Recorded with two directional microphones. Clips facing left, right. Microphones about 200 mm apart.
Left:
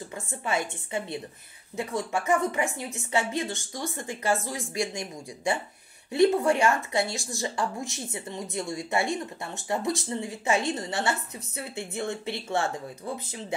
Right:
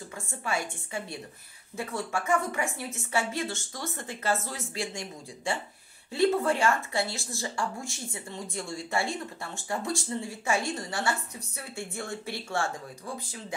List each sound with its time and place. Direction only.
0.3 s a woman's voice: 20° left (ahead or behind)